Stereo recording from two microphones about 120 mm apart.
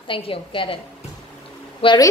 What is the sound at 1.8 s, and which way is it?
Speech, 50° left (ahead or behind).